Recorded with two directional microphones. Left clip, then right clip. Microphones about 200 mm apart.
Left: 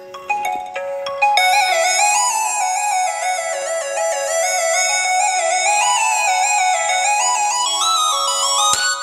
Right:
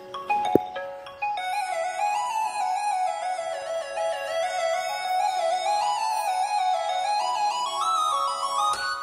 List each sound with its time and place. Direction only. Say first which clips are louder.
1.2 s music: left 14 dB; 35° left (ahead or behind); by 8.9 s 20° left (ahead or behind)